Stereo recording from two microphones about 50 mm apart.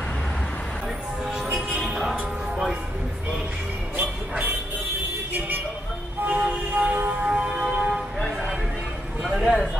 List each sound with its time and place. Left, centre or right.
1.2 s music: centre
6.2 s vehicle: right
7.1 s music: centre
9.3 s a sound: centre